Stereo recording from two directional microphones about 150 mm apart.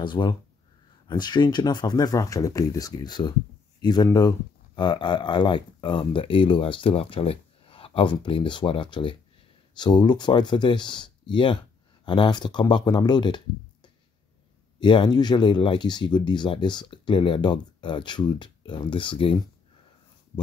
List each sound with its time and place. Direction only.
0.0 s speech: 30° left (ahead or behind)
14.8 s speech: 30° left (ahead or behind)